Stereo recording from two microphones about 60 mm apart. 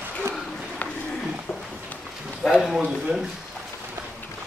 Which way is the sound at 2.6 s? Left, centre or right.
Centre.